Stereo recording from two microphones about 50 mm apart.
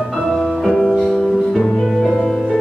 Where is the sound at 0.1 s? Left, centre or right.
Centre.